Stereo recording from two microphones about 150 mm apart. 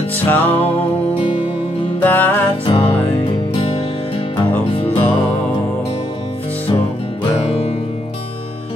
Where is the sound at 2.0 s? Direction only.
10° left (ahead or behind).